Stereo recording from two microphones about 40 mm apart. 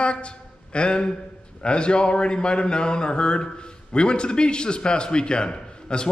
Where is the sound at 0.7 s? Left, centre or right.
Left.